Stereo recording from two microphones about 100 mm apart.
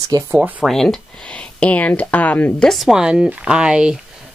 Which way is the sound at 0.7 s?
5° left (ahead or behind).